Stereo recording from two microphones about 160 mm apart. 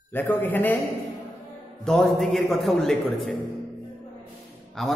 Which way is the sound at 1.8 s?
Centre (ahead or behind).